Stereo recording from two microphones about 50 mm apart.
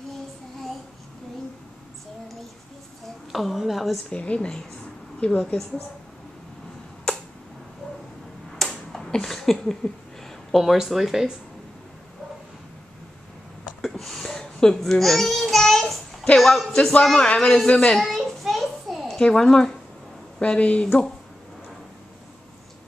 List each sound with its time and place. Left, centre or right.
3.3 s speech: centre
4.1 s a woman's voice: left
8.6 s finger snapping: centre
8.9 s a sound: centre
10.5 s speech: centre
13.7 s babbling: centre
16.3 s a woman's voice: centre
17.9 s a sound: centre
19.1 s a woman's voice: centre
20.8 s a woman's voice: centre